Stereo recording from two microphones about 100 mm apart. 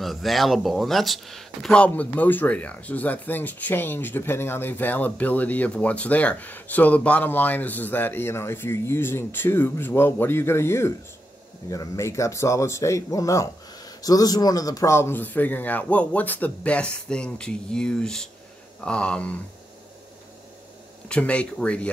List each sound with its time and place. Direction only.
0.0 s a man's voice: centre (ahead or behind)
21.1 s speech: 10° left (ahead or behind)